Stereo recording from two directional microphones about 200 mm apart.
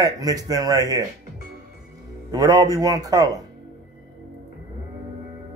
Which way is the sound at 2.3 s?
20° right (ahead or behind).